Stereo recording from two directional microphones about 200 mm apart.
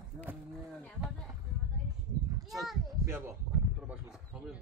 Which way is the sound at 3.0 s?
10° right (ahead or behind).